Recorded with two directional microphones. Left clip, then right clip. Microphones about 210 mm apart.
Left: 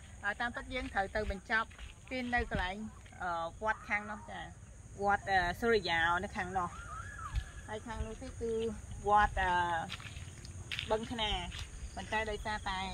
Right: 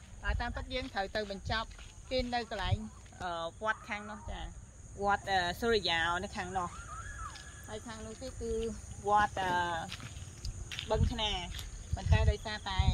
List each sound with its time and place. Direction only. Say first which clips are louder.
0.2 s speech: left 2 dB; 15° right (ahead or behind); by 6.7 s 35° right (ahead or behind)
7.3 s a sound: left 1 dB; 40° right (ahead or behind)
8.6 s speech: even; 35° right (ahead or behind)
10.9 s speech: right 1 dB; 35° right (ahead or behind)